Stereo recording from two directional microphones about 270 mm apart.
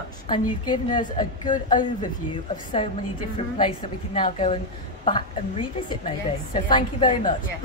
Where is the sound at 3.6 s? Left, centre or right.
Centre.